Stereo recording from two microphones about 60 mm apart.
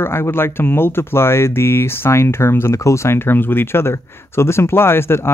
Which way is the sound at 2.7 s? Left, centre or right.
Left.